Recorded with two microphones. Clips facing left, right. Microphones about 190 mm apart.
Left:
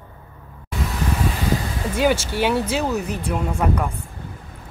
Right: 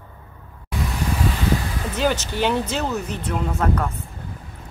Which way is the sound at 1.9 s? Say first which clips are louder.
Left 3 dB; 10° left (ahead or behind).